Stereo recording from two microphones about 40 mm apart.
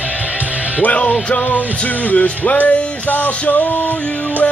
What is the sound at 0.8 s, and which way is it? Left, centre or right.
Music, left.